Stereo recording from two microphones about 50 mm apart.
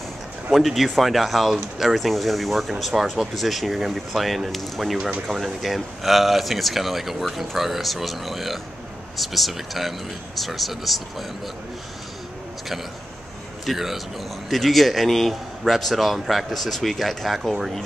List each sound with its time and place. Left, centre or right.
0.5 s speech: centre
13.7 s speech: centre